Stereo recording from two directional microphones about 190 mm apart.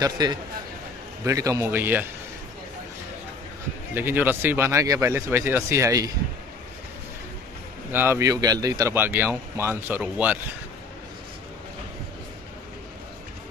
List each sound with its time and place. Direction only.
0.0 s a man's voice: 20° right (ahead or behind)
3.9 s speech: 10° right (ahead or behind)
7.9 s speech: 10° right (ahead or behind)